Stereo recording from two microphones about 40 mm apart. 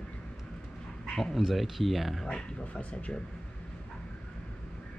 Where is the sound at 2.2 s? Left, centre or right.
Left.